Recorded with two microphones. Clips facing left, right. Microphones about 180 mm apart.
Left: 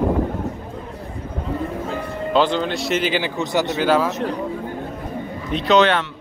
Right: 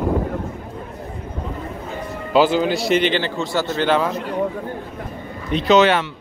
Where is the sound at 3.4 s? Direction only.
20° left (ahead or behind).